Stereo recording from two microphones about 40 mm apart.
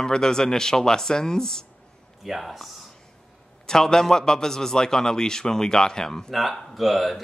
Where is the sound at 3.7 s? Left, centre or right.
Centre.